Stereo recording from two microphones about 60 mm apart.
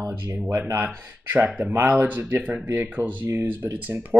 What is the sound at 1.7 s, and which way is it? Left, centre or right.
Speech, right.